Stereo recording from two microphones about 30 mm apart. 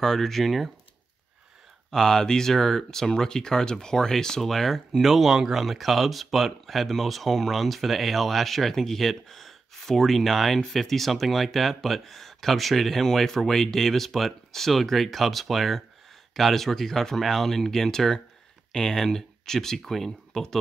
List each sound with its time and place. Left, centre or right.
0.0 s speech: centre
1.9 s speech: centre
4.4 s speech: centre
5.0 s speech: centre